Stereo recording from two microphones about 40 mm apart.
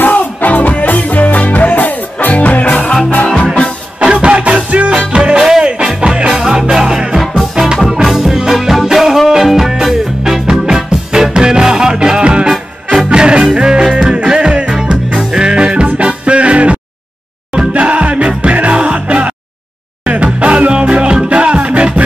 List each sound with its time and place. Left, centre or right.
0.0 s music: left
4.0 s music: right
20.3 s music: right